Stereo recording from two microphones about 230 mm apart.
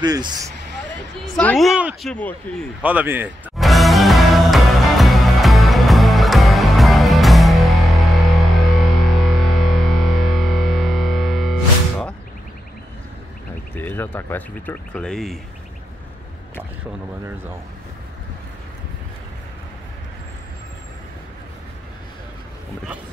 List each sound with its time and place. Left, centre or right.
0.0 s a man's voice: centre
1.3 s speech: centre
2.8 s music: centre
13.7 s speech: centre